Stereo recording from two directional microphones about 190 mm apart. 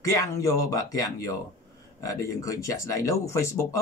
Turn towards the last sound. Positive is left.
turn(degrees=15)  # may be behind; listen again after turning